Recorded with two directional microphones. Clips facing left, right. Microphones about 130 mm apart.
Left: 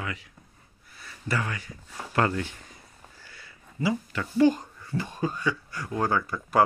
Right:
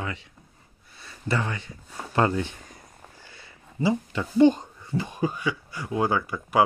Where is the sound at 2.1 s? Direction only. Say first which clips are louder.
Right 2 dB; 20° right (ahead or behind).